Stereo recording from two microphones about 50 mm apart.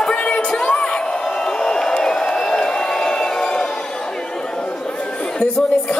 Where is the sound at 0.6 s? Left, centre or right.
Centre.